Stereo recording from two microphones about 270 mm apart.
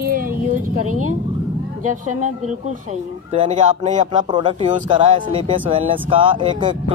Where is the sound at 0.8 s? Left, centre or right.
Right.